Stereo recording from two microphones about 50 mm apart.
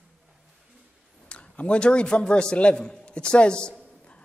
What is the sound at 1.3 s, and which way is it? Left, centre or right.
A man's voice, left.